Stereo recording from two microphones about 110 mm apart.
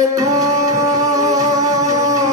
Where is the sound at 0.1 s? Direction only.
30° right (ahead or behind).